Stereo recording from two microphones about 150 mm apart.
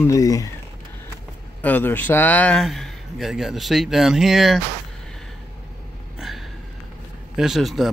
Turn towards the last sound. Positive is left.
turn(degrees=0)  # may be behind; listen again after turning